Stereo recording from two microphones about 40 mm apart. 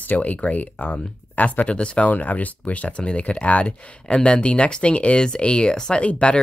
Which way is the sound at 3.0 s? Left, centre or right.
Left.